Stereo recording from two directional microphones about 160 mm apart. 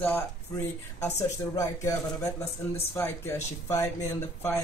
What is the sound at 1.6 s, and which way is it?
Speech, 20° left (ahead or behind).